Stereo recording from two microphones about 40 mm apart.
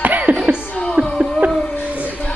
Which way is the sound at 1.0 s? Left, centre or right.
Right.